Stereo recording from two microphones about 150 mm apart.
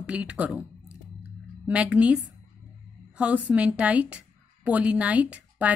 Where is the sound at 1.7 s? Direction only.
10° right (ahead or behind).